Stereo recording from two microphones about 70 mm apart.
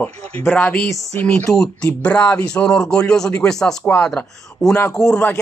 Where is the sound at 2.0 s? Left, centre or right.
Centre.